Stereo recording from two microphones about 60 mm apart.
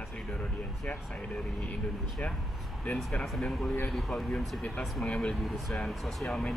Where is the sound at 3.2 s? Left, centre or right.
Centre.